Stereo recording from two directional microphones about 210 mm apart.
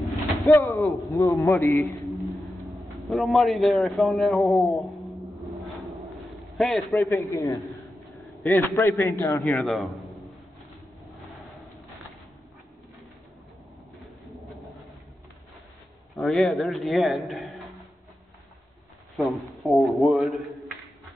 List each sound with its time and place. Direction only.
0.5 s a man's voice: 15° left (ahead or behind)
2.0 s a sound: centre (ahead or behind)
6.5 s a man's voice: centre (ahead or behind)
7.1 s a man's voice: 15° left (ahead or behind)
8.1 s a sound: centre (ahead or behind)
8.5 s a man's voice: 10° left (ahead or behind)
13.9 s bird: centre (ahead or behind)
16.2 s a man's voice: centre (ahead or behind)
19.1 s a man's voice: centre (ahead or behind)